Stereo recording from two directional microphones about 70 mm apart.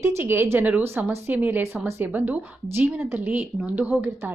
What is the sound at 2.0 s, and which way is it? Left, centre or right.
Speech, right.